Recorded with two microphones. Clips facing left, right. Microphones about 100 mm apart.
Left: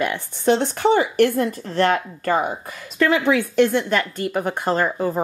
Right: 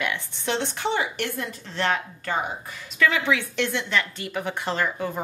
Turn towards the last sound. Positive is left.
turn(degrees=40)  # may be behind; listen again after turning